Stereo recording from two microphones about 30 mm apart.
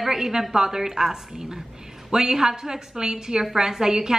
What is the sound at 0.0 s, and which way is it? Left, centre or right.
A woman's voice, centre.